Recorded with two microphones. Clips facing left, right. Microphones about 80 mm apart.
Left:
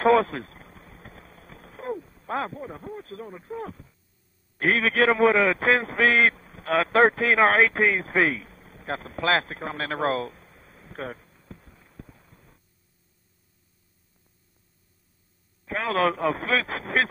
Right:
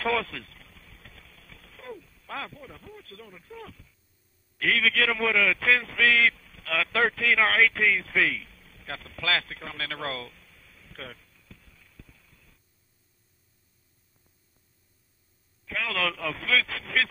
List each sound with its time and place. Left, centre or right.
0.0 s a sound: left
4.6 s a man's voice: left
15.6 s a man's voice: left